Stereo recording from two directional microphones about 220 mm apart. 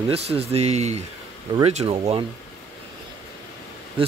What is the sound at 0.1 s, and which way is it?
Speech, 25° right (ahead or behind).